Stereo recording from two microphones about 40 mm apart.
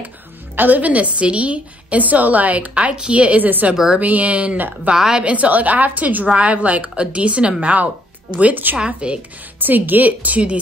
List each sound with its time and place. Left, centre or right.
0.6 s a woman's voice: right
2.7 s a woman's voice: right
4.9 s a woman's voice: centre
5.2 s a woman's voice: right
8.4 s a woman's voice: right
8.7 s speech: right
9.6 s a woman's voice: right